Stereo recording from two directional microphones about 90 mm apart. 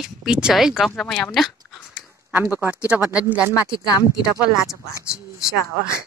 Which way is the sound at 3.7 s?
45° left (ahead or behind).